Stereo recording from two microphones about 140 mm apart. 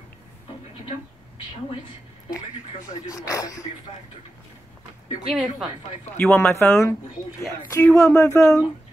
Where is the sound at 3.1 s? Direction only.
25° left (ahead or behind).